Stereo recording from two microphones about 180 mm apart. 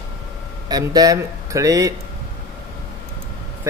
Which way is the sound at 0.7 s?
20° right (ahead or behind).